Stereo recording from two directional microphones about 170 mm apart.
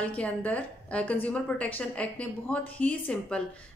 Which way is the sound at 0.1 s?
10° left (ahead or behind).